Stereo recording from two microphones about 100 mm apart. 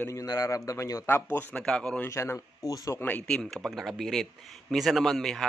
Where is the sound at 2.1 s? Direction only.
30° left (ahead or behind).